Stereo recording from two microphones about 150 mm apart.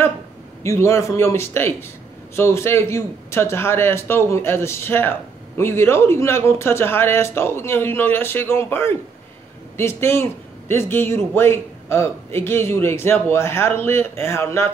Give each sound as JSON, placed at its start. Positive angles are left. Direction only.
{"t": 0.7, "sound": "a man's voice", "side_deg": 20}